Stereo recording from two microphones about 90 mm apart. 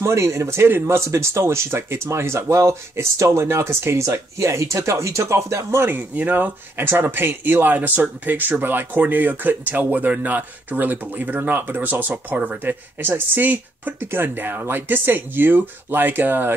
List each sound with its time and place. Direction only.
0.0 s speech: 30° right (ahead or behind)